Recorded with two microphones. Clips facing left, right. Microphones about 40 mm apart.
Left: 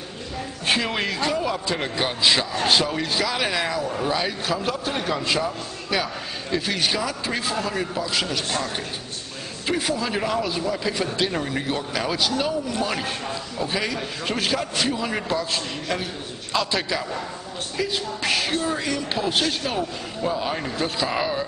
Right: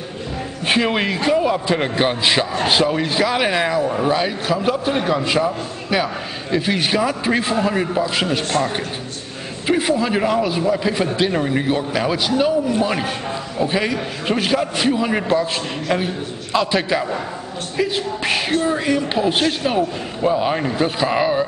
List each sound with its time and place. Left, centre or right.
0.7 s a man's voice: centre